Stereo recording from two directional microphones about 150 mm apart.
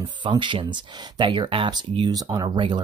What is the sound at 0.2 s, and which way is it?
Speech, 30° right (ahead or behind).